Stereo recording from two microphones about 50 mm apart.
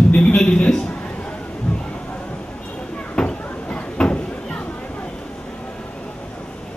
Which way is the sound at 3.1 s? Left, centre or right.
Left.